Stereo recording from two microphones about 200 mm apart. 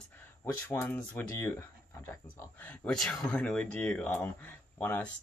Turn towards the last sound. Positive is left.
turn(degrees=10)  # may be behind; listen again after turning